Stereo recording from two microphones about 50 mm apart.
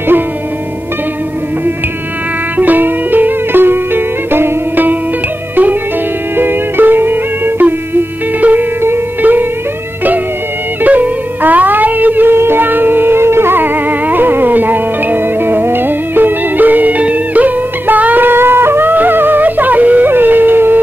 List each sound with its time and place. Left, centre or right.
2.5 s music: right
6.3 s music: right
10.8 s music: right
20.1 s music: right